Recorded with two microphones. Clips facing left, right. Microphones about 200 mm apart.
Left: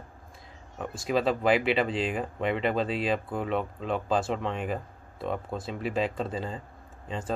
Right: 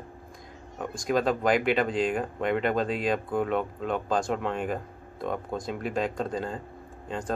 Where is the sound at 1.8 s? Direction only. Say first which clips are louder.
Right 3 dB; 45° right (ahead or behind).